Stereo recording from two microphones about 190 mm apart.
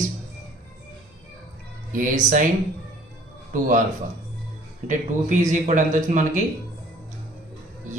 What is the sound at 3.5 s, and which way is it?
Speech, 45° right (ahead or behind).